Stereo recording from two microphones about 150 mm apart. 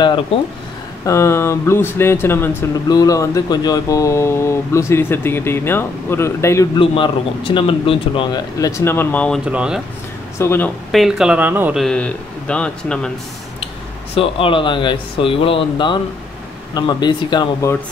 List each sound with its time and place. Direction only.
0.0 s speech: 35° left (ahead or behind)
1.0 s speech: 20° left (ahead or behind)
6.8 s speech: 35° left (ahead or behind); by 9.4 s 10° left (ahead or behind)
9.4 s speech: 5° right (ahead or behind)
10.4 s speech: 15° left (ahead or behind)
10.9 s speech: centre (ahead or behind)
11.8 s speech: 5° left (ahead or behind)
14.1 s speech: 40° left (ahead or behind)